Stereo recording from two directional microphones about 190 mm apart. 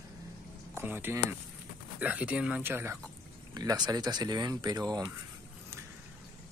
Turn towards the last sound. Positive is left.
turn(degrees=-20)  # may be behind; listen again after turning